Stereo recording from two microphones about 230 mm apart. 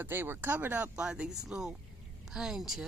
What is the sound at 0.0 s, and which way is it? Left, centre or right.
Speech, centre.